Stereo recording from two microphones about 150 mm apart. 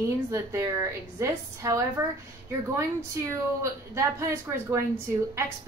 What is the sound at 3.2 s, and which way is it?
A woman's voice, 15° right (ahead or behind).